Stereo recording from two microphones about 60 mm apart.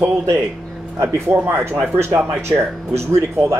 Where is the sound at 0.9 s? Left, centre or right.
Right.